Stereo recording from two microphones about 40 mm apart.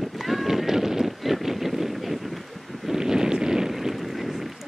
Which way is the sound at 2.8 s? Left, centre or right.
Centre.